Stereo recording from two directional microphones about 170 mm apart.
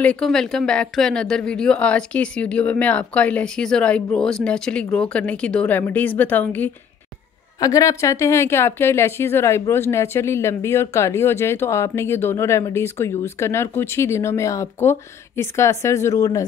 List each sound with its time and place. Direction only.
0.0 s a woman's voice: 5° left (ahead or behind)